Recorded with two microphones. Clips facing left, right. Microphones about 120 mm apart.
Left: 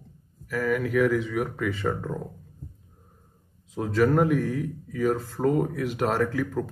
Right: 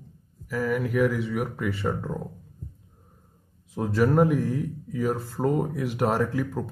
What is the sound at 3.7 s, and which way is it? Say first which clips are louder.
Speech: even; 15° right (ahead or behind).